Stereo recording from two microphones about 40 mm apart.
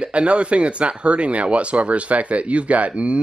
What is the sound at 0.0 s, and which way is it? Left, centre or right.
Speech, right.